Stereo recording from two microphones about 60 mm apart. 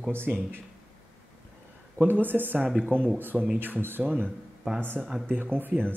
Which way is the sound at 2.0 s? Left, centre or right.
Right.